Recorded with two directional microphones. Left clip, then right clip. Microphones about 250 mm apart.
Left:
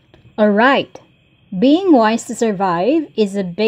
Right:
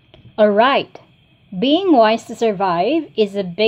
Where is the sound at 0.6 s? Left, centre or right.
Left.